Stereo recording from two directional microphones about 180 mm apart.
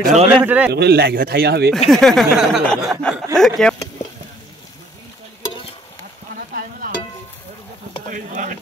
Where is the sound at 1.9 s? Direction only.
Centre (ahead or behind).